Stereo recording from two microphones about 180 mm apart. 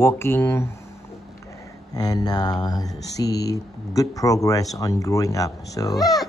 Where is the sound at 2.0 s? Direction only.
20° left (ahead or behind).